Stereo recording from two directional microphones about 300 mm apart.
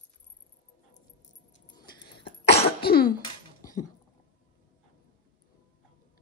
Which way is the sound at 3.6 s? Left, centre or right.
Centre.